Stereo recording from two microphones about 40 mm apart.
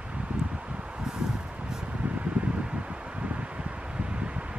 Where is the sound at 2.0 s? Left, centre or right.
Right.